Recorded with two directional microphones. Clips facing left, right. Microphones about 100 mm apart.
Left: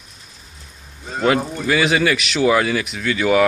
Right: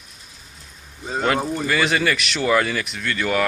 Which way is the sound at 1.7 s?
5° left (ahead or behind).